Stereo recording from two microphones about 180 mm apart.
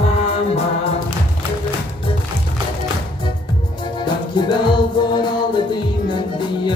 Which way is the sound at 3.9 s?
25° left (ahead or behind).